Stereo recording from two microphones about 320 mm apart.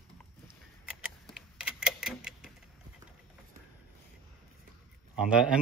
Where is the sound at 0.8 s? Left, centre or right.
Centre.